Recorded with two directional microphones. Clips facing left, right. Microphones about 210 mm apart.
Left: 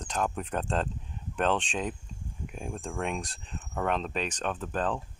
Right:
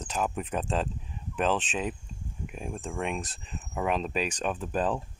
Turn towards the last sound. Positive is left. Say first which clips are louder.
# right 2 dB
turn(degrees=-10)  # may be behind; listen again after turning